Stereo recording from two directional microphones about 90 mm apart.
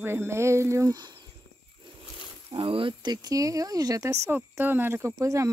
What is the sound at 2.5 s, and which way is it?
Speech, 80° right.